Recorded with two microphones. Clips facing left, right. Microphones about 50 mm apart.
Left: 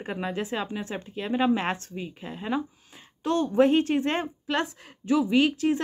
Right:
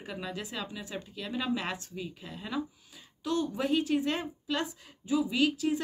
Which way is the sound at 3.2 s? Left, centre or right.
Left.